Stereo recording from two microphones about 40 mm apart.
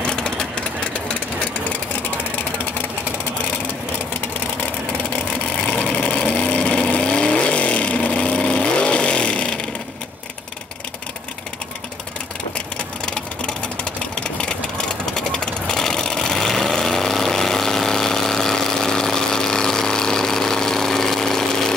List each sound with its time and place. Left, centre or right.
0.0 s engine: left
5.9 s vehicle: left
12.5 s sewing machine: left